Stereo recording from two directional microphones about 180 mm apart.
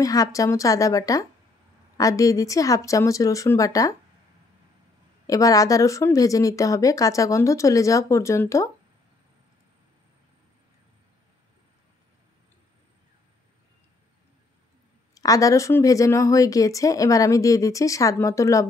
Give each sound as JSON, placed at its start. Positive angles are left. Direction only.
{"t": 0.0, "sound": "speech", "side_deg": 20}
{"t": 5.2, "sound": "speech", "side_deg": 20}
{"t": 15.1, "sound": "speech", "side_deg": 20}